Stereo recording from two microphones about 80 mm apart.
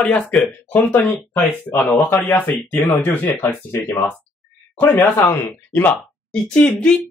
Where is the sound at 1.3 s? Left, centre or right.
Left.